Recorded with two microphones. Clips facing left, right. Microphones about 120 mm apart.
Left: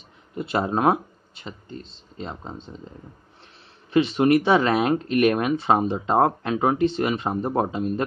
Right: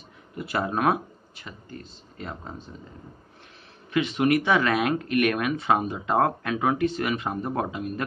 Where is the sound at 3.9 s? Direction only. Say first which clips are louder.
Left 4 dB; 30° left (ahead or behind).